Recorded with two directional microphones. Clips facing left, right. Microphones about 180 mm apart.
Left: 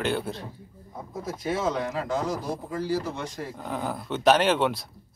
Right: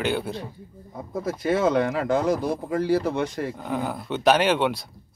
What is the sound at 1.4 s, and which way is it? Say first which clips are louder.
Speech: right 6 dB; 60° right (ahead or behind).